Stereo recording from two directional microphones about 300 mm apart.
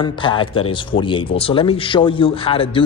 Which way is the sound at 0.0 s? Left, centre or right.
Centre.